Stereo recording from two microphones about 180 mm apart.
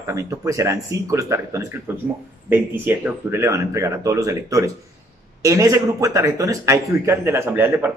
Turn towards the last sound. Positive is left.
turn(degrees=-10)  # may be behind; listen again after turning